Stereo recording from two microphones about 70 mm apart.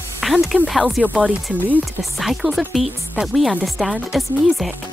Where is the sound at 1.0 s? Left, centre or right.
Centre.